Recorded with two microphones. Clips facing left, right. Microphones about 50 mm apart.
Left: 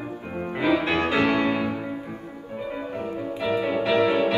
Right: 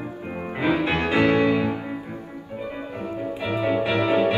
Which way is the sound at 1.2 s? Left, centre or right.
Right.